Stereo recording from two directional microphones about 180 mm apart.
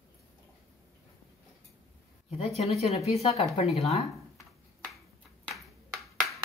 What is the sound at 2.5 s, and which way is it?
Speech, 35° left (ahead or behind).